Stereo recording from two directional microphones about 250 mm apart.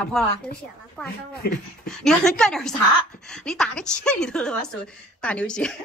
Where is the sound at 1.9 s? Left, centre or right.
Centre.